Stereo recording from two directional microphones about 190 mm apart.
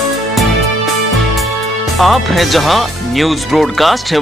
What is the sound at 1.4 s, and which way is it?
Speech, centre (ahead or behind).